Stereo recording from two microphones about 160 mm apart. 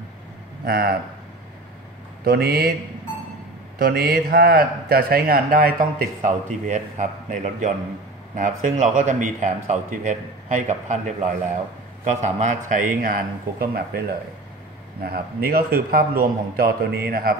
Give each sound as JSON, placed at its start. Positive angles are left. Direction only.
{"t": 0.7, "sound": "a man's voice", "side_deg": -75}
{"t": 2.2, "sound": "a man's voice", "side_deg": -75}
{"t": 3.7, "sound": "a man's voice", "side_deg": -70}